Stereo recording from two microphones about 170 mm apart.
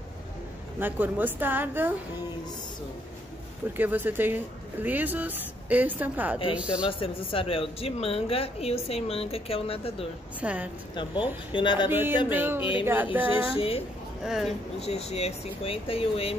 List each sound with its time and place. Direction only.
0.7 s speech: 10° right (ahead or behind)
3.7 s speech: 10° right (ahead or behind)
6.9 s speech: 30° left (ahead or behind)
10.4 s speech: 10° right (ahead or behind)
11.5 s speech: 30° left (ahead or behind)
11.9 s speech: 10° right (ahead or behind)
13.6 s speech: 35° left (ahead or behind)
14.2 s speech: centre (ahead or behind)
14.8 s speech: 40° left (ahead or behind)